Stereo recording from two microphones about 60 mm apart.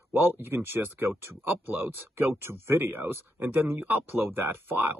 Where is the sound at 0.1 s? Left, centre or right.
Right.